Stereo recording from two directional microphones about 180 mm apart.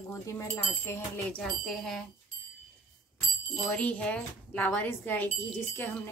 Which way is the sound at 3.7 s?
5° left (ahead or behind).